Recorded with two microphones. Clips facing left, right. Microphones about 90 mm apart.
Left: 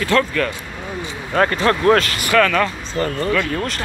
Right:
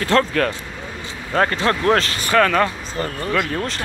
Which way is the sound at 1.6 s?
30° left (ahead or behind).